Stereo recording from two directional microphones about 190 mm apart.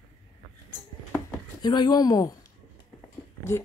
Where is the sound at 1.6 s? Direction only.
20° left (ahead or behind).